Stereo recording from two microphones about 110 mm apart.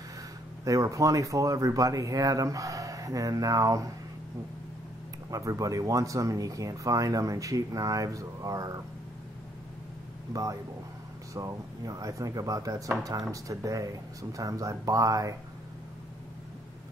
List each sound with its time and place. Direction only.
0.7 s speech: 30° right (ahead or behind)
5.3 s speech: 30° right (ahead or behind)
10.3 s speech: 30° right (ahead or behind)